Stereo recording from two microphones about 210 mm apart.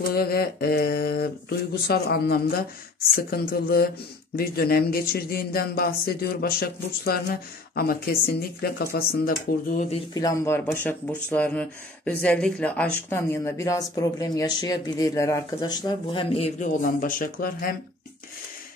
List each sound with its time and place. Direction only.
0.1 s speech: 45° left (ahead or behind)
10.1 s speech: 15° left (ahead or behind); by 17.7 s 40° left (ahead or behind)